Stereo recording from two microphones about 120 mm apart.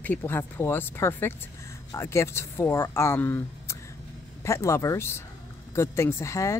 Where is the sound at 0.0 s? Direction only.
15° left (ahead or behind).